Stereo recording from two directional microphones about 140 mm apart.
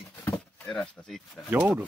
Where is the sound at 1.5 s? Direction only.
10° right (ahead or behind).